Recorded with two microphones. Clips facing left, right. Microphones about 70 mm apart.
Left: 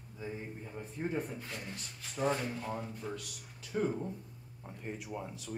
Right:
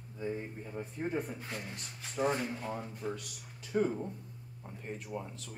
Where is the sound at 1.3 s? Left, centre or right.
Right; by 3.9 s centre.